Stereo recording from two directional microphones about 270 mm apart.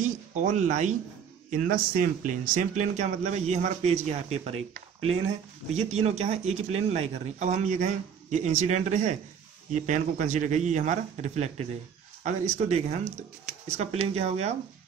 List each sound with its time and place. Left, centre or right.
0.0 s speech: right